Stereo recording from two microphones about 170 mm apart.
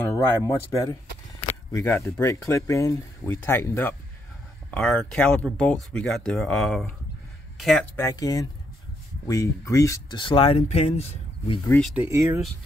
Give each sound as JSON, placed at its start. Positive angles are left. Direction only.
{"t": 0.1, "sound": "speech", "side_deg": 20}
{"t": 7.9, "sound": "speech", "side_deg": 15}
{"t": 11.9, "sound": "speech", "side_deg": -15}